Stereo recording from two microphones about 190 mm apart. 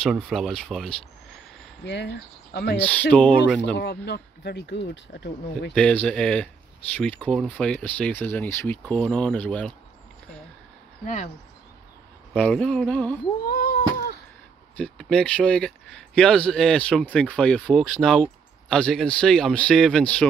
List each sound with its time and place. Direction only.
0.0 s speech: centre (ahead or behind)
2.5 s speech: 55° left (ahead or behind)
2.8 s speech: 5° left (ahead or behind)
3.7 s speech: 60° left (ahead or behind)
5.8 s speech: 5° left (ahead or behind)
12.4 s a man's voice: 5° left (ahead or behind)
13.5 s a sound: 50° left (ahead or behind)
14.8 s speech: 5° left (ahead or behind)